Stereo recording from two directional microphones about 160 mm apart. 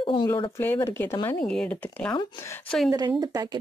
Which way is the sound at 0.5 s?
15° left (ahead or behind).